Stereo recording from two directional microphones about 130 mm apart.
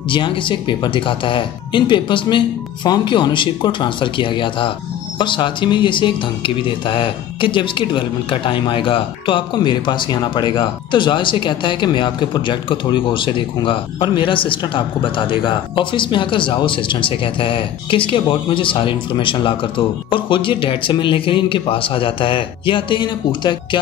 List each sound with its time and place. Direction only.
0.1 s speech: 40° left (ahead or behind)